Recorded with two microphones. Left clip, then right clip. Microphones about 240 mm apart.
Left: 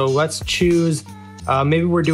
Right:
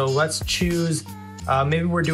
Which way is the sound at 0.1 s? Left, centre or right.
Left.